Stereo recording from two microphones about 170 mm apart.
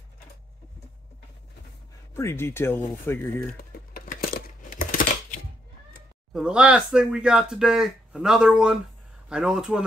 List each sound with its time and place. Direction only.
2.1 s speech: 15° left (ahead or behind)
3.9 s a sound: 60° left (ahead or behind)
6.3 s speech: 5° right (ahead or behind)